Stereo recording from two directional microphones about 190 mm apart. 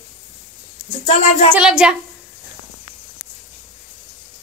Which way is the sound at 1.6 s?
5° right (ahead or behind).